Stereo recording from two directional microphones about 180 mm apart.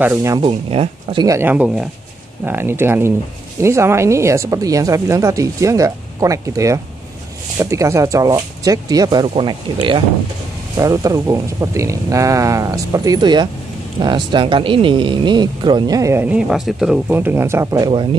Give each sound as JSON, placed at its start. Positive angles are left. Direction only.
{"t": 0.0, "sound": "speech", "side_deg": -15}
{"t": 0.5, "sound": "speech", "side_deg": -35}
{"t": 1.2, "sound": "speech", "side_deg": -15}